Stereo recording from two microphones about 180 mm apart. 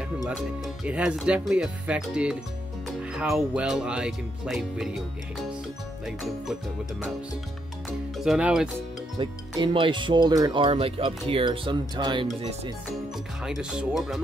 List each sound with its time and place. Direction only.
0.8 s speech: 5° right (ahead or behind)
6.0 s speech: centre (ahead or behind)
8.2 s speech: 5° right (ahead or behind)
9.2 s speech: 25° right (ahead or behind)
13.4 s speech: 5° right (ahead or behind)